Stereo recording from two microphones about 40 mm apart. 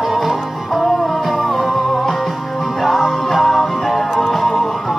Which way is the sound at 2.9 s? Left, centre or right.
Centre.